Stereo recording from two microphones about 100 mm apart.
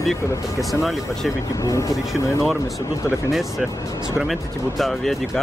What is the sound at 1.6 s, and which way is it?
Speech, 35° left (ahead or behind).